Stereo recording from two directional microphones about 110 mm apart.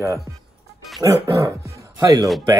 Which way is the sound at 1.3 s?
30° right (ahead or behind).